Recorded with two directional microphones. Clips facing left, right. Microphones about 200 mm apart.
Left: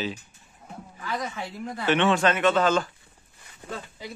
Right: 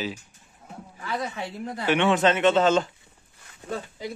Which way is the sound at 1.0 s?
20° right (ahead or behind).